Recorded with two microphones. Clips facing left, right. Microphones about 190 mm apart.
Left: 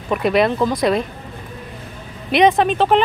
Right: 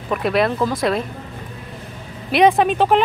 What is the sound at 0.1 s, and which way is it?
Speech, centre (ahead or behind).